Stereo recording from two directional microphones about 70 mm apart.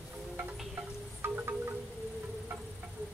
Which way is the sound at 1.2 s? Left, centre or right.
Right.